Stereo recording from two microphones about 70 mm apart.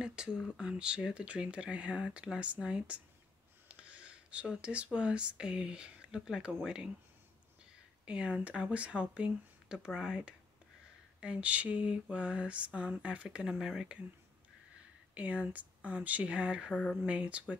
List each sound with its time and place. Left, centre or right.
0.0 s a sound: centre
0.6 s speech: centre
8.0 s speech: centre
15.1 s speech: centre
16.7 s speech: centre
17.0 s speech: centre